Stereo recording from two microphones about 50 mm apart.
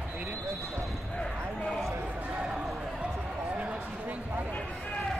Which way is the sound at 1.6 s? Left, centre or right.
Centre.